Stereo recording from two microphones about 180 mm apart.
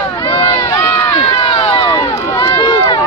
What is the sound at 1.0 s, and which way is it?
Run, 30° left (ahead or behind).